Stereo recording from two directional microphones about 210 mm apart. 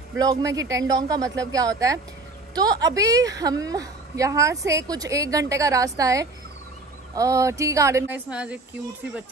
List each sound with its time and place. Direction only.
0.2 s a woman's voice: 15° right (ahead or behind)